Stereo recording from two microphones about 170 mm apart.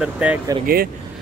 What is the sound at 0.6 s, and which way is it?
Speech, 65° right (ahead or behind).